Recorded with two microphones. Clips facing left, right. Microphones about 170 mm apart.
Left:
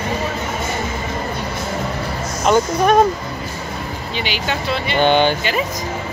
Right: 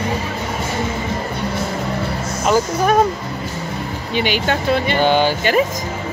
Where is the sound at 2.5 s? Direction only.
5° right (ahead or behind).